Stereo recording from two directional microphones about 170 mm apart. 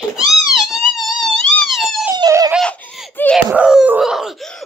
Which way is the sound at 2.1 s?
20° right (ahead or behind).